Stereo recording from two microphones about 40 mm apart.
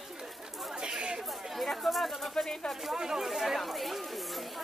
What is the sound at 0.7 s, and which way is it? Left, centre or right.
Chatter, right.